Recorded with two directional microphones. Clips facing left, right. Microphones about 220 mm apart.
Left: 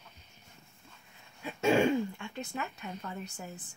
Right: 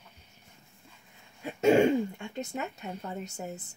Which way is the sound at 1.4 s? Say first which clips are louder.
Right 4 dB; 25° right (ahead or behind).